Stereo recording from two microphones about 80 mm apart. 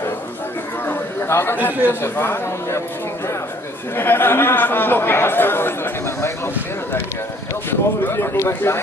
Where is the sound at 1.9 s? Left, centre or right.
Left.